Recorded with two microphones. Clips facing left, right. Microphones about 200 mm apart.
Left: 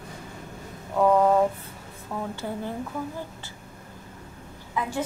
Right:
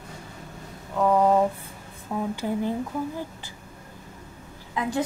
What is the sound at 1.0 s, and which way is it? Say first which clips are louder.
A woman's voice: even; 10° right (ahead or behind).